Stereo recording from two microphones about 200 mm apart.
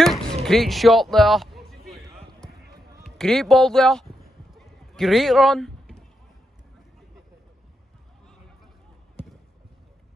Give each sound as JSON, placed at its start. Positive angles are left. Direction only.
{"t": 0.0, "sound": "a sound", "side_deg": 0}
{"t": 2.4, "sound": "basketball bounce", "side_deg": 5}
{"t": 3.2, "sound": "speech", "side_deg": 0}
{"t": 4.6, "sound": "clip-clop", "side_deg": 0}